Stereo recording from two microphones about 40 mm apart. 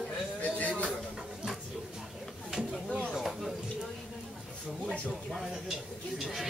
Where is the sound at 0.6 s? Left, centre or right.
Left.